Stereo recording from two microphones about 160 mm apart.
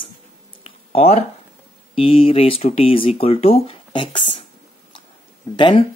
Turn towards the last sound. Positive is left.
turn(degrees=30)  # may be behind; listen again after turning